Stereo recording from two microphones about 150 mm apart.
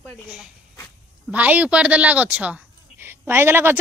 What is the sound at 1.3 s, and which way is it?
A woman's voice, 10° right (ahead or behind).